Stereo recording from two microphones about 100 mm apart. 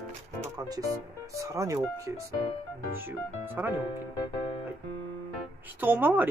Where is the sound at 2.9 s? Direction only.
20° right (ahead or behind).